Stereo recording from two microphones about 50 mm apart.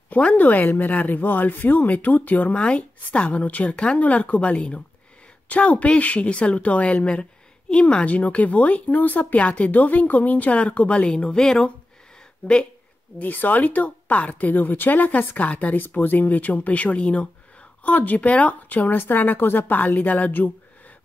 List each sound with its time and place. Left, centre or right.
0.1 s speech: left
11.1 s speech: centre
12.4 s speech: left